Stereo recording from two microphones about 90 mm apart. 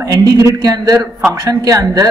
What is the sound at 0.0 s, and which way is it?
A man's voice, 40° right (ahead or behind).